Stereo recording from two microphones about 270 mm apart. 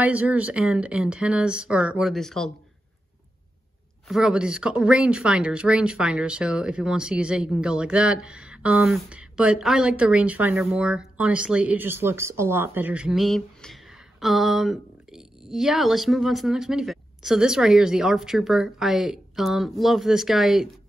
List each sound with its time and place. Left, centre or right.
0.0 s speech: centre
4.1 s speech: centre